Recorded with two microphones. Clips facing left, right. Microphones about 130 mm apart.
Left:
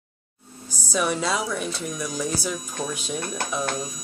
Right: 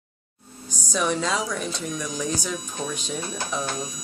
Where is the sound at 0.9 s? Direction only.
5° left (ahead or behind).